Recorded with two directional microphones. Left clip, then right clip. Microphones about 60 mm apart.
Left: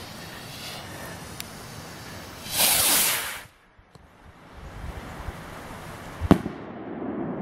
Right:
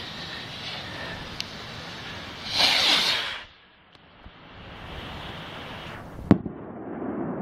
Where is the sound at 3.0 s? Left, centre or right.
Left.